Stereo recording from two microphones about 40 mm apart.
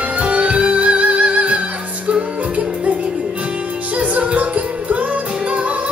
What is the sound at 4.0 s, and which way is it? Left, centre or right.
Music, right.